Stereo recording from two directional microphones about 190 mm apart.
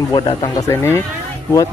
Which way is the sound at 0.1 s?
25° left (ahead or behind).